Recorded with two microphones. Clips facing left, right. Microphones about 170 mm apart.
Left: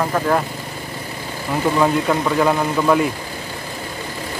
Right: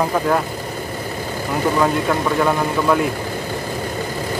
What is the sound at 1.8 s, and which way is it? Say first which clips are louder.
Speech: left 2 dB; centre (ahead or behind).